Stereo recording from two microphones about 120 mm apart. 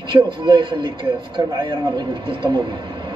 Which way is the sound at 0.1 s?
45° right (ahead or behind).